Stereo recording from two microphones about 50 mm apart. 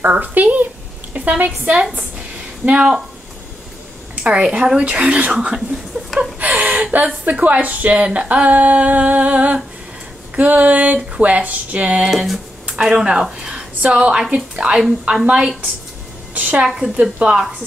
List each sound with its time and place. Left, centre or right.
0.0 s a woman's voice: right
2.0 s a sound: right
4.1 s speech: right
6.4 s a sound: right
7.2 s speech: right
12.1 s speech: centre
16.3 s speech: right
16.6 s speech: centre